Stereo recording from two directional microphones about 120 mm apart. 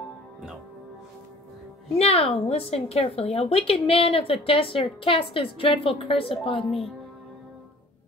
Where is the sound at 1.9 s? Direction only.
55° left (ahead or behind).